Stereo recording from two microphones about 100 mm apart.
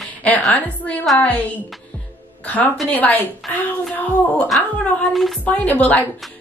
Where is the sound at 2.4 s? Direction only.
15° left (ahead or behind).